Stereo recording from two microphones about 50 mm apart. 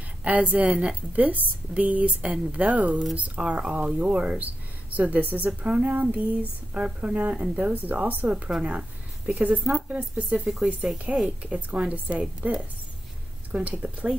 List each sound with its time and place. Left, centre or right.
0.2 s a woman's voice: right
8.6 s a sound: right
9.4 s a woman's voice: right
10.3 s speech: centre
11.5 s a woman's voice: right